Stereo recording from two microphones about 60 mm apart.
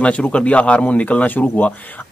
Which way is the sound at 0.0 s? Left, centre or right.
Centre.